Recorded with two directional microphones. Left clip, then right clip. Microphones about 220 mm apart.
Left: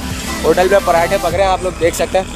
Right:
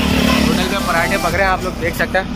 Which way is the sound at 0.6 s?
25° left (ahead or behind).